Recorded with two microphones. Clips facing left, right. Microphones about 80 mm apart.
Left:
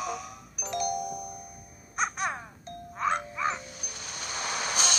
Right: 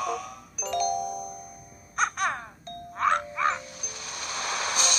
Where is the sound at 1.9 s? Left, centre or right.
Right.